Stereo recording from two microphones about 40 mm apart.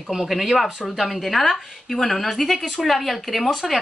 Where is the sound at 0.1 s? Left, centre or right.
Centre.